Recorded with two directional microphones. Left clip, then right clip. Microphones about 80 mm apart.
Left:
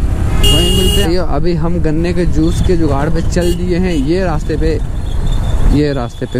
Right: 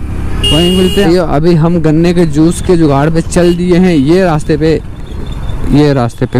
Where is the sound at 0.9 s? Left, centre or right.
Right.